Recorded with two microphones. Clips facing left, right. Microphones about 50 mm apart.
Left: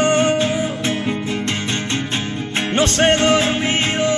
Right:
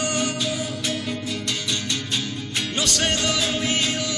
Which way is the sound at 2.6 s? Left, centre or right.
Left.